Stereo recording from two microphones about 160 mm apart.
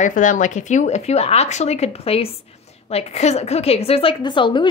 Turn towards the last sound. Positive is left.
turn(degrees=30)  # may be behind; listen again after turning